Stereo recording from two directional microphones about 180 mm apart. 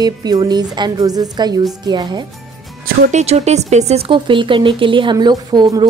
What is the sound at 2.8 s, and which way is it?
Speech, 40° right (ahead or behind).